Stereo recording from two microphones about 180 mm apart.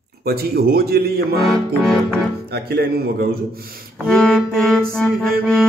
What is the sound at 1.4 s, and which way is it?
Music, 5° left (ahead or behind).